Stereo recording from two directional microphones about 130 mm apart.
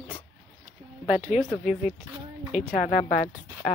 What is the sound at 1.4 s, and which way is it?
Speech, centre (ahead or behind).